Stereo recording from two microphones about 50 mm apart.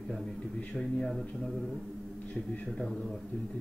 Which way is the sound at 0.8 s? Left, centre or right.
Centre.